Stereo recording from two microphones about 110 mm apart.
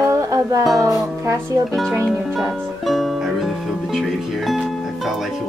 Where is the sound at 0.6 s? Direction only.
Centre (ahead or behind).